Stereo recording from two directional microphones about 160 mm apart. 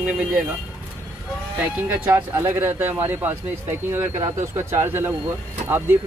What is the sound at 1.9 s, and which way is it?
Speech, 15° right (ahead or behind).